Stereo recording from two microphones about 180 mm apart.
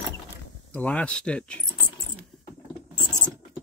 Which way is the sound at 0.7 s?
10° left (ahead or behind).